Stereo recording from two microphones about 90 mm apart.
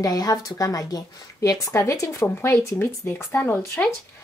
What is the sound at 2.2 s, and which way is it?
Speech, 25° left (ahead or behind).